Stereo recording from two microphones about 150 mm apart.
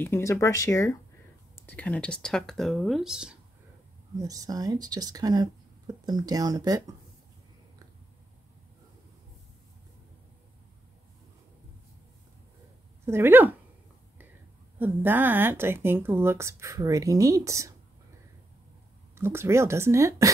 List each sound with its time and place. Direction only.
0.0 s speech: 15° left (ahead or behind)
1.5 s speech: 10° left (ahead or behind)
4.2 s speech: 25° right (ahead or behind)
13.0 s speech: 15° right (ahead or behind)
14.8 s speech: 15° right (ahead or behind)
19.1 s speech: 15° right (ahead or behind)